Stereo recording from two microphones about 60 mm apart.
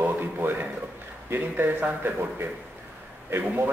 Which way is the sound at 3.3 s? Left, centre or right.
Right.